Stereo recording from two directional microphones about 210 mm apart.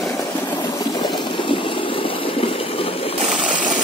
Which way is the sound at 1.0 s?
20° left (ahead or behind).